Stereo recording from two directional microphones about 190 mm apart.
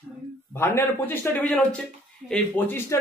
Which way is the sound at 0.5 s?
10° left (ahead or behind).